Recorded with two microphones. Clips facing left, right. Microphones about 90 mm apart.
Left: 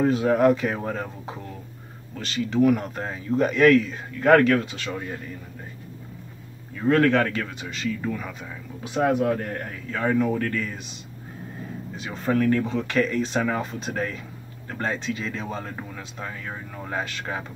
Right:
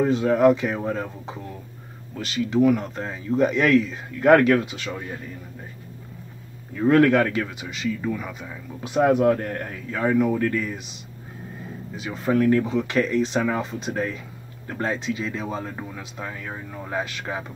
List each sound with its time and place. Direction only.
0.0 s speech: 5° left (ahead or behind)
6.8 s speech: 15° right (ahead or behind)
8.8 s speech: 20° right (ahead or behind)
12.0 s speech: 5° right (ahead or behind)
12.4 s speech: 15° right (ahead or behind)
12.6 s speech: centre (ahead or behind)